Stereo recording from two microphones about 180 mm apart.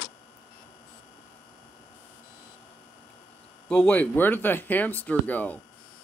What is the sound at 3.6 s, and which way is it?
Speech, 10° left (ahead or behind).